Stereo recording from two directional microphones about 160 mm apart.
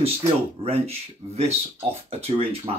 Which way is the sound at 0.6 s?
40° right (ahead or behind).